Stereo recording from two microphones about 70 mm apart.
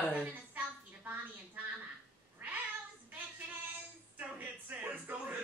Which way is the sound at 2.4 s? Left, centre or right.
Right.